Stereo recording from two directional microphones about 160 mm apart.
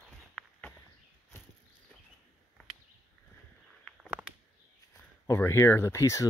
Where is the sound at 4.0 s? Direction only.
5° right (ahead or behind).